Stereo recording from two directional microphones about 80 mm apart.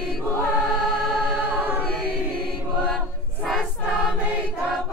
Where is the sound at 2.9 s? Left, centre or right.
Centre.